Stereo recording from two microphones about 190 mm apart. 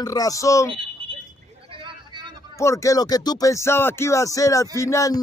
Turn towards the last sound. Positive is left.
turn(degrees=15)  # may be behind; listen again after turning